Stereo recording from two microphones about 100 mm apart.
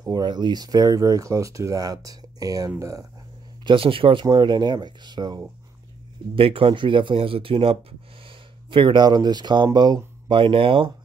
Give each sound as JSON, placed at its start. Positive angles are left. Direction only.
{"t": 0.0, "sound": "speech", "side_deg": -45}
{"t": 3.6, "sound": "speech", "side_deg": -60}
{"t": 6.3, "sound": "speech", "side_deg": -65}